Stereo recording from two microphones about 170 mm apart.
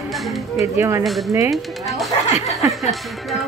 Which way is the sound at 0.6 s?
15° right (ahead or behind).